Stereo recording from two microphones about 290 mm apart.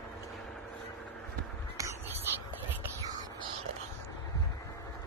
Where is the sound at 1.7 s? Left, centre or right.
Centre.